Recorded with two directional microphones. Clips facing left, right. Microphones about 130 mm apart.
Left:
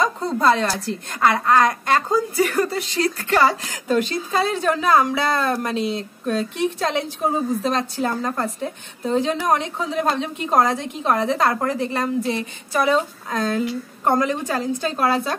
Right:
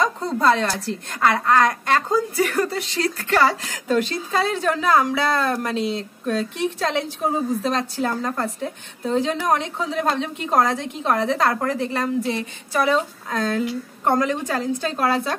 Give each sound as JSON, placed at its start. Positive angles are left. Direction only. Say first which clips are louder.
{"t": 0.0, "sound": "a woman's voice", "louder": "left 1 dB", "side_deg": 15}